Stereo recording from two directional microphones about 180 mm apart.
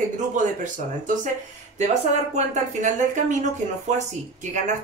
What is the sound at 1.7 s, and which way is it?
A woman's voice, 40° right (ahead or behind).